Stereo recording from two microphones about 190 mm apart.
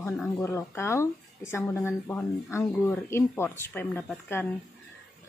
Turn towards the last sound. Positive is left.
turn(degrees=10)  # may be behind; listen again after turning